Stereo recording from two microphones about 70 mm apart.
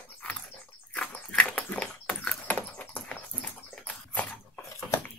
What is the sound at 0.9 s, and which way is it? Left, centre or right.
Dog, centre.